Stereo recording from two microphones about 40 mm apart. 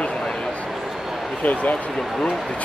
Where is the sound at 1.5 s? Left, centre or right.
Left.